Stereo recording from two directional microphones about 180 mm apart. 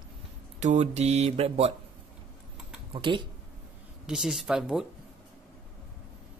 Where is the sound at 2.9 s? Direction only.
25° right (ahead or behind).